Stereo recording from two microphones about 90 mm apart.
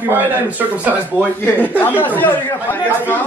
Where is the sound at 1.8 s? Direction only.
20° left (ahead or behind).